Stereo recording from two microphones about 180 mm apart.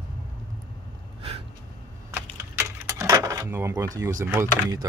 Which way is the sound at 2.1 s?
15° right (ahead or behind).